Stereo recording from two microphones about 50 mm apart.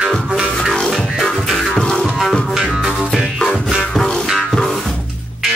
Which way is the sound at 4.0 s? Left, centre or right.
Centre.